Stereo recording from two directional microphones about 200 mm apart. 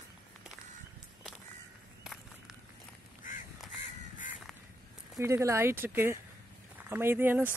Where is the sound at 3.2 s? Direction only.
40° left (ahead or behind).